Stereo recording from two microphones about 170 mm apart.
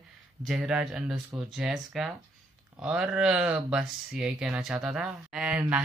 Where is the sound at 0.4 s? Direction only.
5° right (ahead or behind).